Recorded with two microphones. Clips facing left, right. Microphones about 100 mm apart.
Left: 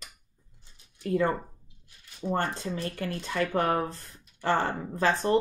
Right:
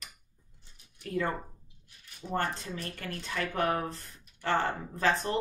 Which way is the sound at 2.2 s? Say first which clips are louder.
Left 3 dB; 30° left (ahead or behind).